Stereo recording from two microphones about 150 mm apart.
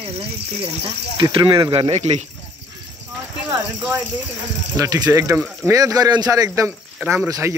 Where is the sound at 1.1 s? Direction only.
30° right (ahead or behind); by 2.2 s 45° right (ahead or behind).